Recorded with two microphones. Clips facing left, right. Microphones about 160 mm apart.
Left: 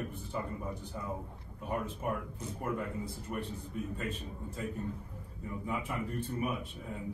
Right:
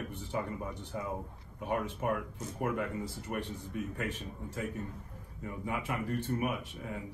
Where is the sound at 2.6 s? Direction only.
80° right.